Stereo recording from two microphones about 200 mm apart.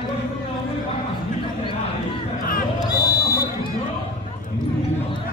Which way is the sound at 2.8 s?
20° left (ahead or behind).